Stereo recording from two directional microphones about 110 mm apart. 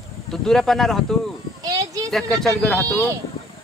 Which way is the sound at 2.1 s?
5° left (ahead or behind).